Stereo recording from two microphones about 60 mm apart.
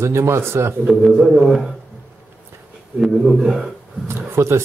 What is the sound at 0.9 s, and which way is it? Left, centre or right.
Speech, centre.